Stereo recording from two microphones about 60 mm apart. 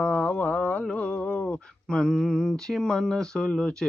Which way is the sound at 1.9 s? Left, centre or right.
Centre.